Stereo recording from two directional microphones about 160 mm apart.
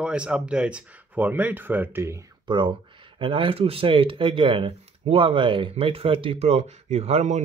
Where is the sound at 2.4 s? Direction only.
30° right (ahead or behind).